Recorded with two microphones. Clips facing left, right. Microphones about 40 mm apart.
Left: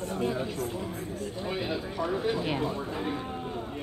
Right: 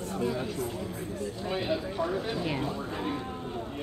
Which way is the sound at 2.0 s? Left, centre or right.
Centre.